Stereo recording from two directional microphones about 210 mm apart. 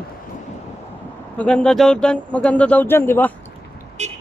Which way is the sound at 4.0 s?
35° right (ahead or behind).